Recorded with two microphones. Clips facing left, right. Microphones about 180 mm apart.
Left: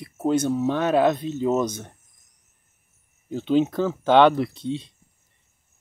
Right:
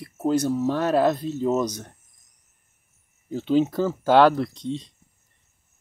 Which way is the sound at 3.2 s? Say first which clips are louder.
Even; 5° right (ahead or behind).